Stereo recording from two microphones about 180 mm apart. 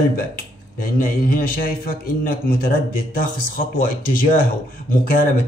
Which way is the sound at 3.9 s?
50° left (ahead or behind).